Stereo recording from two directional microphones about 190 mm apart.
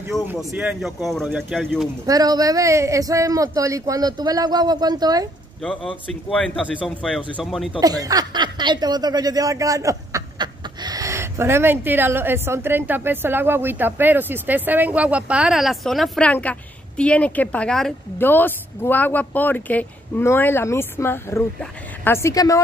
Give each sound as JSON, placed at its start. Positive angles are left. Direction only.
{"t": 0.3, "sound": "speech", "side_deg": -5}
{"t": 2.0, "sound": "speech", "side_deg": -20}
{"t": 6.4, "sound": "speech", "side_deg": 5}
{"t": 7.8, "sound": "a woman's voice", "side_deg": -20}